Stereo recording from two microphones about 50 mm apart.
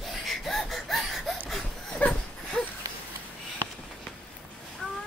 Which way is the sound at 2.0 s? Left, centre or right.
Left.